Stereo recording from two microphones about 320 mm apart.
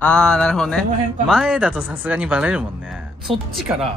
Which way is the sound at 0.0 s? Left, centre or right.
Centre.